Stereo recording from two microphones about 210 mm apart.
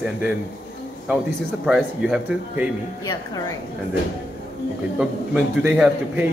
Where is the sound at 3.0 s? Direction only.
15° left (ahead or behind).